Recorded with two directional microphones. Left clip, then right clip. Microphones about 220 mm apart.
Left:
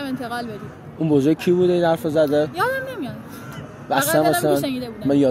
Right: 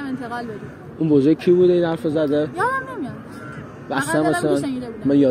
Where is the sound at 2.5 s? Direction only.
55° left (ahead or behind).